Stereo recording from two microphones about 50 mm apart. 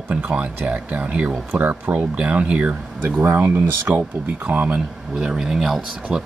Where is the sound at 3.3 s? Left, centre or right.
Right.